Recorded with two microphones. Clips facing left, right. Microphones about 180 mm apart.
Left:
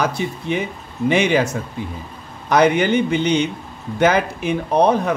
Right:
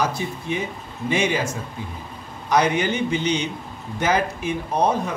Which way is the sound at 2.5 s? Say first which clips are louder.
Left 5 dB; 60° left (ahead or behind).